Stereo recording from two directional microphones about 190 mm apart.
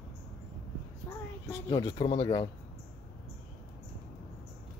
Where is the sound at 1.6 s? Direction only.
20° left (ahead or behind).